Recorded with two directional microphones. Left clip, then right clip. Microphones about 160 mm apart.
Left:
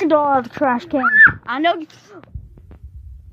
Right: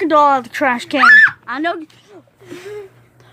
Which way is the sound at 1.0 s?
40° right (ahead or behind).